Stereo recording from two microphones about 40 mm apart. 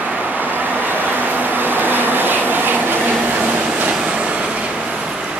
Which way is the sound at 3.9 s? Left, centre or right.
Right.